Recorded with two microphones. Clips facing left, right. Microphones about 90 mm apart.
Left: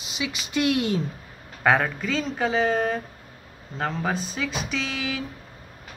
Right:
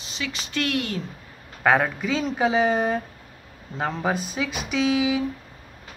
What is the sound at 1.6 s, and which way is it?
Speech, 5° right (ahead or behind).